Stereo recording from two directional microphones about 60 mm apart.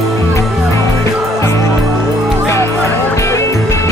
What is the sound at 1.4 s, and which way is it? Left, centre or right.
Music, left.